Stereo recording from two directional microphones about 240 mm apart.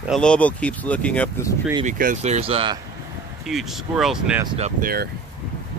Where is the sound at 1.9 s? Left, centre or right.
Right.